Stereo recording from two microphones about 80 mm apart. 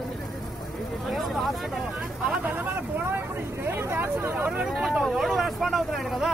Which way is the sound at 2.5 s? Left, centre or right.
Right.